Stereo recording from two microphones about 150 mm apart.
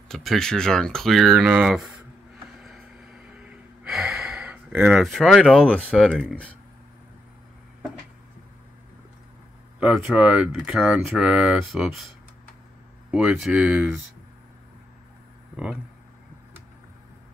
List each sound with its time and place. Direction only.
0.1 s speech: centre (ahead or behind)
3.8 s gasp: centre (ahead or behind)
5.0 s speech: centre (ahead or behind)
9.8 s speech: 5° right (ahead or behind)
13.1 s speech: 5° right (ahead or behind)
15.5 s speech: 5° right (ahead or behind)